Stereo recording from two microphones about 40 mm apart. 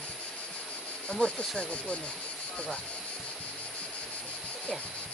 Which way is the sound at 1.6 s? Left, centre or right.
Left.